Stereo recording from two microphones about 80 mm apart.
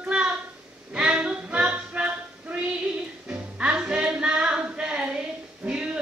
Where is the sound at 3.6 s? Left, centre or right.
Centre.